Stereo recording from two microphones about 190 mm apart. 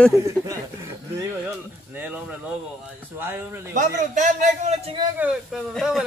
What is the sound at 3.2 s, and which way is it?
Speech, 10° right (ahead or behind).